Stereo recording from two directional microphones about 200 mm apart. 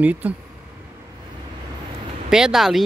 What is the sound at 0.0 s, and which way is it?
Speech, 5° right (ahead or behind).